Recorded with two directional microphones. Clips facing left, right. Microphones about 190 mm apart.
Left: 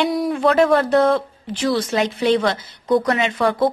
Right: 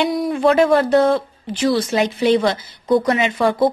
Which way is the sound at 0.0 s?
5° right (ahead or behind).